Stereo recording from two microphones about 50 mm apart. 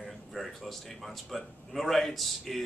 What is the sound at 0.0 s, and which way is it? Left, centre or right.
Speech, centre.